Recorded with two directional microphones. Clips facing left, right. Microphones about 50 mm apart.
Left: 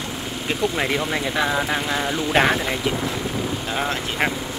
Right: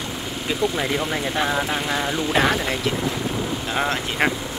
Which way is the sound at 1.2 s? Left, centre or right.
Centre.